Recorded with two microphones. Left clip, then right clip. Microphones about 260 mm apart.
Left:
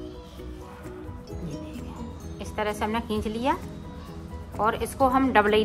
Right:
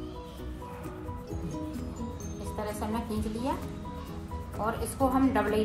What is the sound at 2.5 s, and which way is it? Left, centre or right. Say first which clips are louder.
A woman's voice: left 7 dB; left.